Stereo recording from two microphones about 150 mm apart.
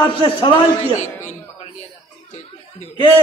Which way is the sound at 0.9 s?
50° left (ahead or behind).